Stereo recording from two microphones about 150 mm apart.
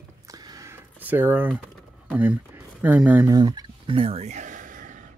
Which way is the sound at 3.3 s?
30° right (ahead or behind).